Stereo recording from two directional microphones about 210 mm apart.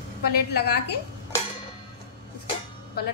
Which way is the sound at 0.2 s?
50° left (ahead or behind).